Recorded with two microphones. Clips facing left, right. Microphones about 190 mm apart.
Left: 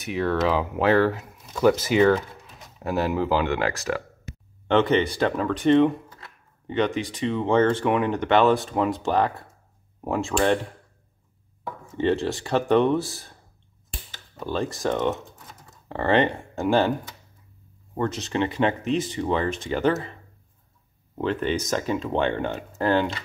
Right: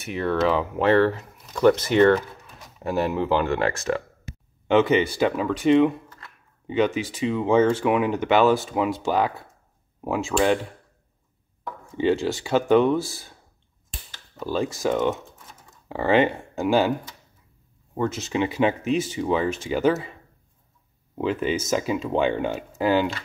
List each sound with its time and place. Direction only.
0.0 s speech: centre (ahead or behind)
12.0 s speech: centre (ahead or behind)
14.4 s speech: 5° right (ahead or behind)
17.9 s speech: 5° right (ahead or behind)
21.2 s speech: 5° right (ahead or behind)